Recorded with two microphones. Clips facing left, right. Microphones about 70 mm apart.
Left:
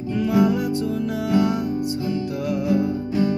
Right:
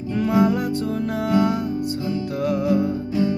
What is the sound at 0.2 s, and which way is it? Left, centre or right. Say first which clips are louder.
Music: even; right.